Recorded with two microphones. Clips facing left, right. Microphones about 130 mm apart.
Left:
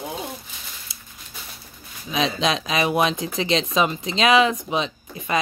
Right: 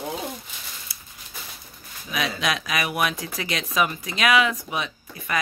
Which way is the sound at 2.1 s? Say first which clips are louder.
Left 4 dB; 25° left (ahead or behind).